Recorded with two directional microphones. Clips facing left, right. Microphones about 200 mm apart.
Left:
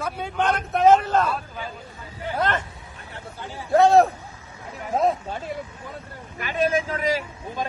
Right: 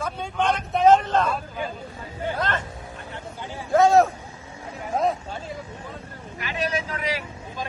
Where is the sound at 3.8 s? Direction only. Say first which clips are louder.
Left 1 dB; centre (ahead or behind).